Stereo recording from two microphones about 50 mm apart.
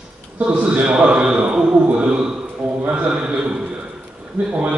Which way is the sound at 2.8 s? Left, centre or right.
Right.